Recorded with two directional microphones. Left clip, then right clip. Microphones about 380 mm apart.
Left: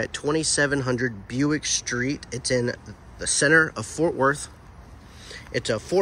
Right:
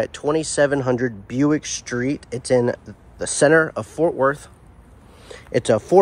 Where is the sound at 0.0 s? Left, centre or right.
Centre.